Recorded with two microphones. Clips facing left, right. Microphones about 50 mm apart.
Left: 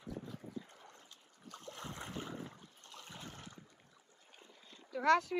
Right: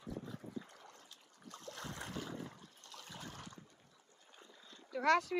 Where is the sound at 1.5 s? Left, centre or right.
Left.